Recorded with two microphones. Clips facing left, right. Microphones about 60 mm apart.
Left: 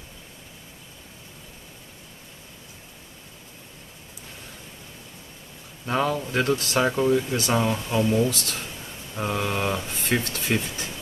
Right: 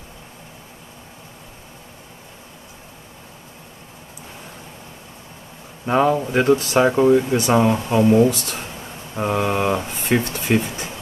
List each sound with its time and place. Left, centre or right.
5.9 s speech: centre